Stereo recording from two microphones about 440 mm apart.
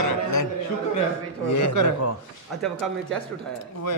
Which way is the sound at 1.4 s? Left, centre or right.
Left.